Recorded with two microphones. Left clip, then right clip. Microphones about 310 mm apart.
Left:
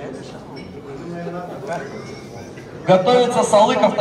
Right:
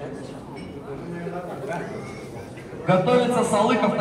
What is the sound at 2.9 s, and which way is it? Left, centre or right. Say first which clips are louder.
A man's voice: left 5 dB; left.